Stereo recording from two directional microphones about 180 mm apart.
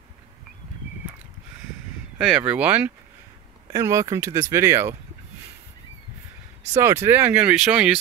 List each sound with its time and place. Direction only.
2.1 s speech: centre (ahead or behind)
6.7 s speech: 15° right (ahead or behind)